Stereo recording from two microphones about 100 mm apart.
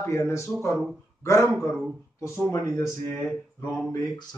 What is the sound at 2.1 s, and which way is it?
Speech, 25° left (ahead or behind).